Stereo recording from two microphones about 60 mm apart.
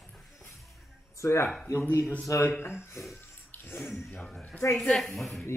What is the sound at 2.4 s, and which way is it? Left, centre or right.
Speech, left.